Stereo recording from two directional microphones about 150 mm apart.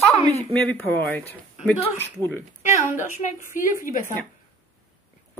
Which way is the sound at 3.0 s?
60° left (ahead or behind).